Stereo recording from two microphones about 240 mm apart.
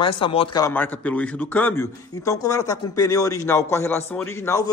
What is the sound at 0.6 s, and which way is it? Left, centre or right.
A man's voice, centre.